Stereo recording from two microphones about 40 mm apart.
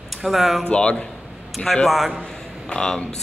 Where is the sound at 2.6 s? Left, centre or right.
Centre.